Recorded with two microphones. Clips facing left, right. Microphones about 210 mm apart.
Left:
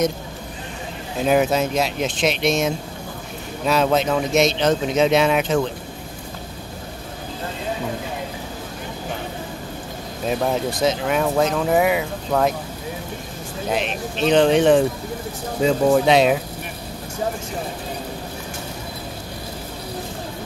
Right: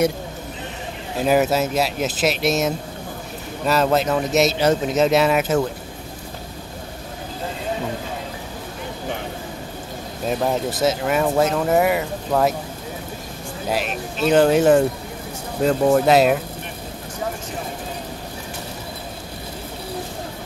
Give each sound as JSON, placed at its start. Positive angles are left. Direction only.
{"t": 1.2, "sound": "speech", "side_deg": -5}
{"t": 10.2, "sound": "speech", "side_deg": -5}
{"t": 13.7, "sound": "speech", "side_deg": -5}